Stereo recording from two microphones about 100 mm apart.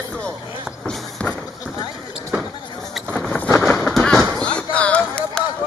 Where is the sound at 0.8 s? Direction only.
5° left (ahead or behind).